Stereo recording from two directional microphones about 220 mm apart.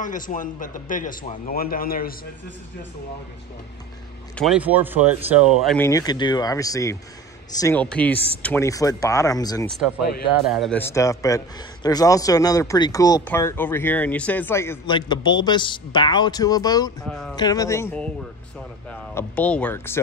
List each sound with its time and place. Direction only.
0.0 s speech: 35° left (ahead or behind)
4.4 s speech: 5° right (ahead or behind)
5.8 s a man's voice: 15° left (ahead or behind)
10.4 s a man's voice: centre (ahead or behind); by 16.9 s 15° left (ahead or behind)
17.0 s speech: centre (ahead or behind)
17.4 s a man's voice: 15° left (ahead or behind)